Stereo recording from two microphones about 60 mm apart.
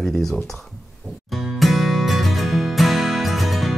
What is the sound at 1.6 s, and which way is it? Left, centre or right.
Music, centre.